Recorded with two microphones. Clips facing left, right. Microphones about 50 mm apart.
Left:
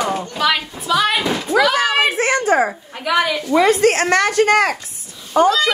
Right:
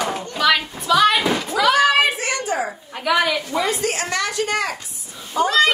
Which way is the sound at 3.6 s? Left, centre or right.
Left.